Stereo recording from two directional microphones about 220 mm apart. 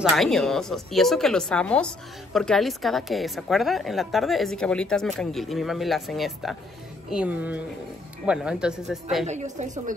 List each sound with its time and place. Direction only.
0.1 s a woman's voice: centre (ahead or behind)
9.2 s a woman's voice: 30° right (ahead or behind)